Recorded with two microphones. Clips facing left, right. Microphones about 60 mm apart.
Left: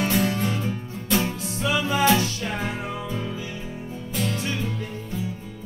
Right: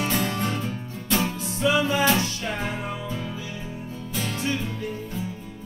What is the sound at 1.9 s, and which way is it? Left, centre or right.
Music, left.